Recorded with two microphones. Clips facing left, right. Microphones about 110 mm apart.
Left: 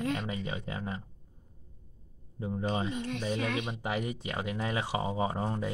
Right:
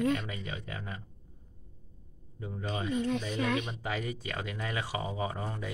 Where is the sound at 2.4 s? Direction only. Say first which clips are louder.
Left 4 dB; 30° left (ahead or behind).